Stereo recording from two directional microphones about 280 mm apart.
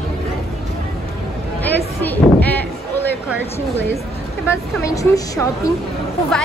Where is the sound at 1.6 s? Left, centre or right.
Centre.